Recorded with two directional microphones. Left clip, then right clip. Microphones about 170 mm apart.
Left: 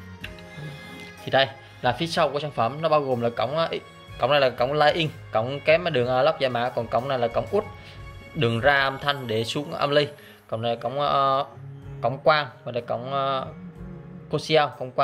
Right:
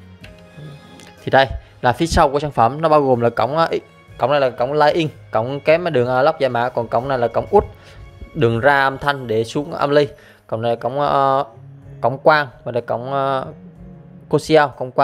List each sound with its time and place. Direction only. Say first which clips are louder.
0.9 s speech: right 7 dB; 45° right (ahead or behind)
4.3 s a man's voice: right 3 dB; 25° right (ahead or behind)